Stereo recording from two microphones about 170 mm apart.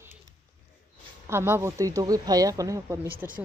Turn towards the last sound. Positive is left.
turn(degrees=-15)  # may be behind; listen again after turning